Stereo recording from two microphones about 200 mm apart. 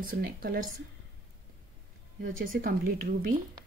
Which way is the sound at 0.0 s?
45° right (ahead or behind).